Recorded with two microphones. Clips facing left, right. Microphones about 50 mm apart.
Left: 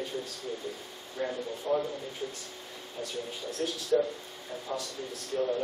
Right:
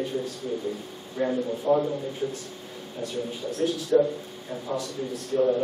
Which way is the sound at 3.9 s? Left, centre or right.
Centre.